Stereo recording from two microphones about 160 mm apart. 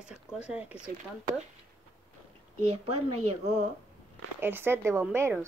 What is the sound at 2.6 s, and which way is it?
Speech, 40° right (ahead or behind).